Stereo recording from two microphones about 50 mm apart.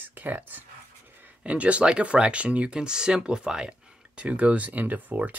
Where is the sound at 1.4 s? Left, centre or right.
Right.